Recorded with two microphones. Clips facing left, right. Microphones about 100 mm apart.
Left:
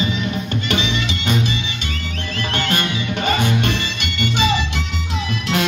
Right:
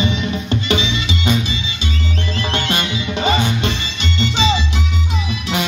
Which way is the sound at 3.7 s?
50° left (ahead or behind).